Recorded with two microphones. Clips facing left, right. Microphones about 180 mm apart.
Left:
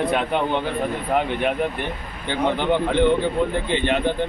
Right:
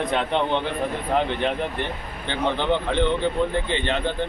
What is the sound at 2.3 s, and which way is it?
Speech, 15° left (ahead or behind).